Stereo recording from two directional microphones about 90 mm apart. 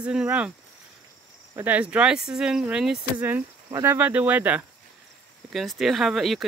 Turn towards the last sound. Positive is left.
turn(degrees=0)  # may be behind; listen again after turning